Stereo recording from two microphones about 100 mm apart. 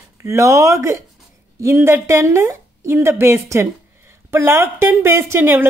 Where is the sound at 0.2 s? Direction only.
30° right (ahead or behind).